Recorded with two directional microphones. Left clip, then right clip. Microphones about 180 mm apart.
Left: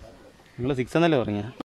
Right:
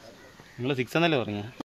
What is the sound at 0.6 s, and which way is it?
Speech, 30° left (ahead or behind).